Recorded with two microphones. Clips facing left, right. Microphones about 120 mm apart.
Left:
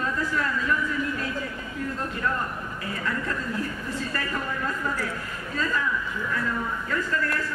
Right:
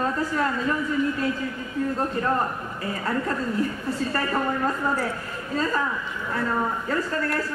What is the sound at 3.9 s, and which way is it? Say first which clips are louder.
A woman's voice: right 5 dB; 35° right (ahead or behind).